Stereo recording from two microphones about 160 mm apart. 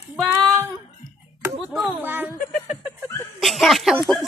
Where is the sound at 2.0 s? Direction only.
10° right (ahead or behind).